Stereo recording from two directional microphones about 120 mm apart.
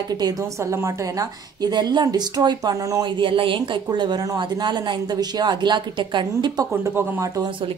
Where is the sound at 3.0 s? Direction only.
45° right (ahead or behind).